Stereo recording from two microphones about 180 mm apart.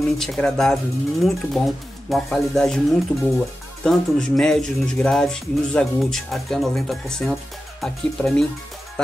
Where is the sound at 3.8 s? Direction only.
5° left (ahead or behind).